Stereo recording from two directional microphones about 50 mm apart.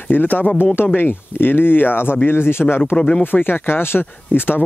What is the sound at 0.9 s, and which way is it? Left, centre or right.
Speech, left.